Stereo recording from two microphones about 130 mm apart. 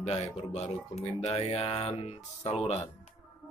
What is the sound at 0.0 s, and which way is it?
Speech, 55° left (ahead or behind).